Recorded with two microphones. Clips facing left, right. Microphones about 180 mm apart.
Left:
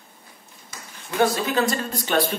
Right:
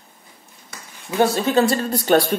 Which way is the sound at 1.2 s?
30° right (ahead or behind).